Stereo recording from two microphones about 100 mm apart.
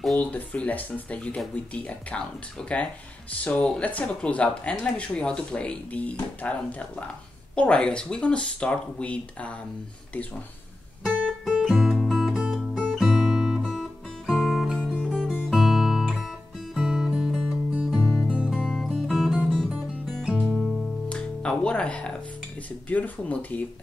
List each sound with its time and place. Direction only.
0.2 s speech: 15° left (ahead or behind)
11.5 s music: centre (ahead or behind)
14.8 s guitar: 10° left (ahead or behind); by 17.8 s 10° right (ahead or behind)
17.9 s music: 10° right (ahead or behind)
21.1 s music: 10° left (ahead or behind)
22.8 s speech: 15° left (ahead or behind)